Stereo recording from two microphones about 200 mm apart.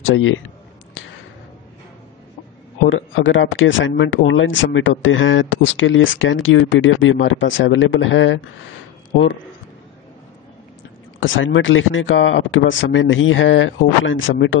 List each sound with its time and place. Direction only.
0.0 s speech: 80° left
2.9 s speech: 75° left (ahead or behind)
11.1 s speech: 75° left (ahead or behind)